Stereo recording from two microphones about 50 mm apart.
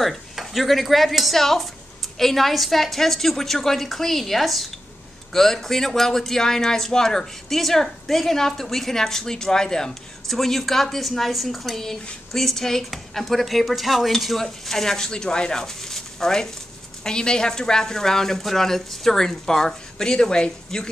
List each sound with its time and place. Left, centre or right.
0.0 s speech: centre